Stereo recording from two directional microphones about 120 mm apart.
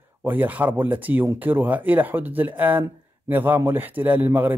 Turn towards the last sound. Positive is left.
turn(degrees=-15)  # may be behind; listen again after turning